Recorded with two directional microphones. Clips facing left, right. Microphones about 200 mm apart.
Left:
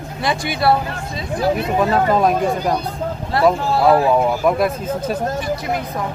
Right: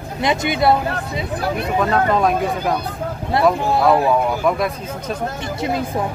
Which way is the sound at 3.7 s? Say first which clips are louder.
Left 1 dB; 5° left (ahead or behind).